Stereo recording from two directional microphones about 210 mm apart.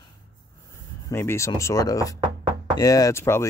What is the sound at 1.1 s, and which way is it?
Speech, 10° left (ahead or behind).